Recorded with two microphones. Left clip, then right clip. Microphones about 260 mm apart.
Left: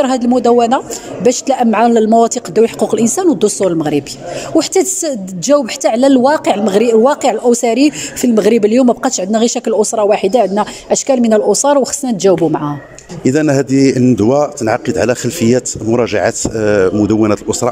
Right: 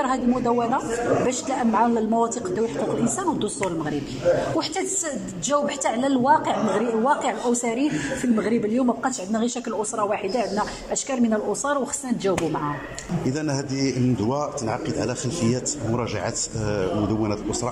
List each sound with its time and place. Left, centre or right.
0.0 s a man's voice: left